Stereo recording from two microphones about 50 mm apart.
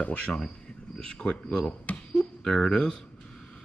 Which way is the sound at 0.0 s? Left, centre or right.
Left.